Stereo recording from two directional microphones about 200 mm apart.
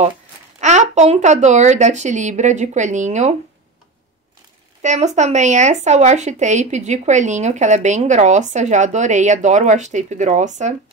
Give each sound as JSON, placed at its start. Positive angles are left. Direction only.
{"t": 0.6, "sound": "speech", "side_deg": -35}
{"t": 4.8, "sound": "speech", "side_deg": -35}